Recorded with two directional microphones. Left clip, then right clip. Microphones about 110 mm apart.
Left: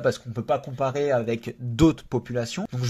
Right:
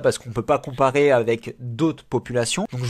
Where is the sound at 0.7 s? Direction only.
80° right.